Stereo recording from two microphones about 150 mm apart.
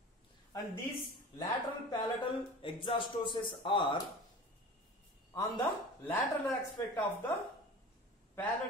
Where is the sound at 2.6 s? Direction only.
35° left (ahead or behind).